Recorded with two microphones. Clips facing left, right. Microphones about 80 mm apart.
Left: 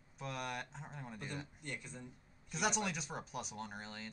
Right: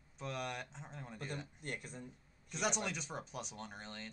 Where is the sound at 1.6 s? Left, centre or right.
Right.